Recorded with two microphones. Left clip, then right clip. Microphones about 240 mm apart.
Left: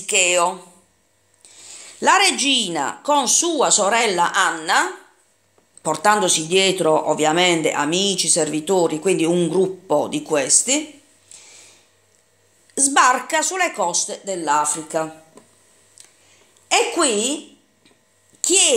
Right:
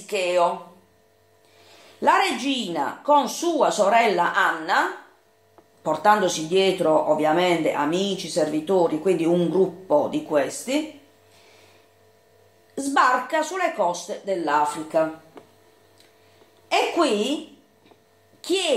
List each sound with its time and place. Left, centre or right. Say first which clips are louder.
0.0 s speech: left 4 dB; left
2.0 s speech: left 4 dB; left
12.7 s speech: left 4 dB; left
16.6 s speech: left 3 dB; left
18.4 s speech: left 6 dB; left